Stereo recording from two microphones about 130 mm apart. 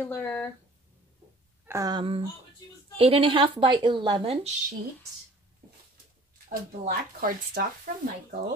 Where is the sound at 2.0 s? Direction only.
45° right (ahead or behind).